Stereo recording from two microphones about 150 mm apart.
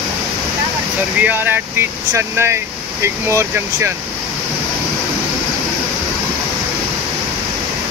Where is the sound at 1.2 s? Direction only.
15° right (ahead or behind).